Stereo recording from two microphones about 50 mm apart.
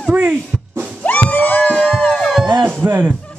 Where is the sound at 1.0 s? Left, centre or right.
Left.